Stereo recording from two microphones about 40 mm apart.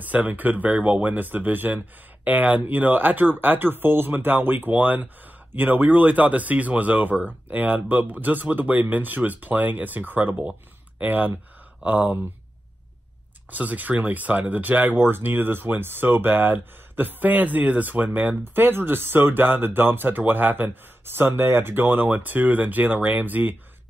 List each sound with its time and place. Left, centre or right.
0.0 s speech: right
13.5 s speech: right
15.0 s speech: right
18.4 s speech: right
21.0 s speech: right